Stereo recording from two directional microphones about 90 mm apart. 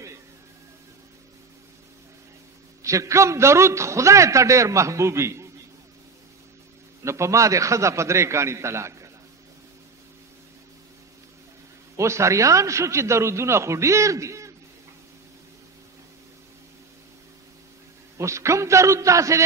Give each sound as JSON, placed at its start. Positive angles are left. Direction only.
{"t": 2.8, "sound": "a man's voice", "side_deg": -35}
{"t": 7.1, "sound": "a man's voice", "side_deg": -35}
{"t": 12.0, "sound": "a man's voice", "side_deg": -35}
{"t": 18.1, "sound": "a man's voice", "side_deg": -30}